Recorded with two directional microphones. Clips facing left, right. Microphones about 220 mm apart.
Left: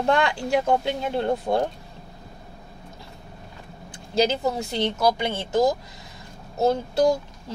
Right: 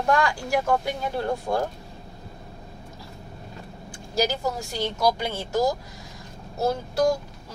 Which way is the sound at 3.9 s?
20° left (ahead or behind).